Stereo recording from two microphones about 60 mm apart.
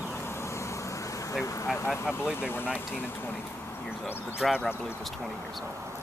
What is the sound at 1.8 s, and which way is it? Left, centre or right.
Speech, left.